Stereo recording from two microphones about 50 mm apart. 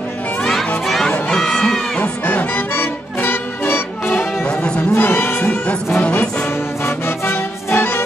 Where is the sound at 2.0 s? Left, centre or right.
Left.